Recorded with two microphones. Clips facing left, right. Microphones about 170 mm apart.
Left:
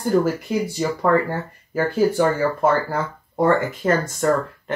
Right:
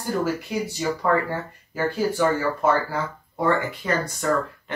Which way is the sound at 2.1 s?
50° left (ahead or behind).